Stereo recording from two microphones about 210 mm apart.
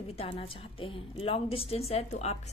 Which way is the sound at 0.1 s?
25° left (ahead or behind).